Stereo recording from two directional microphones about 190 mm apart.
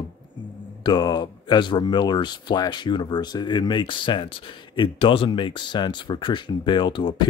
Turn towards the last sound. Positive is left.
turn(degrees=25)  # may be behind; listen again after turning